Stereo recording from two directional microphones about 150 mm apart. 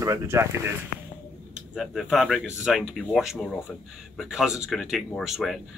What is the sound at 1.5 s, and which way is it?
Speech, 5° right (ahead or behind).